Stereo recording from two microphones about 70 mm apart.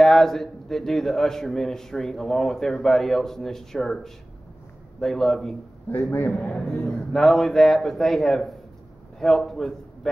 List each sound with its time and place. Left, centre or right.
0.0 s a man's voice: centre
5.9 s a man's voice: left
6.5 s a man's voice: centre
6.9 s a man's voice: centre